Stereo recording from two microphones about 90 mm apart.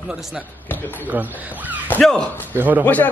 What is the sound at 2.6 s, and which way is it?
Speech, 20° right (ahead or behind).